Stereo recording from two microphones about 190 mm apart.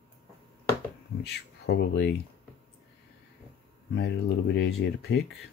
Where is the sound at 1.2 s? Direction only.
60° left (ahead or behind).